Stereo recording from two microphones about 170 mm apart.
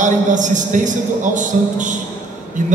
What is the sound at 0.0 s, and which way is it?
A man's voice, 45° right (ahead or behind).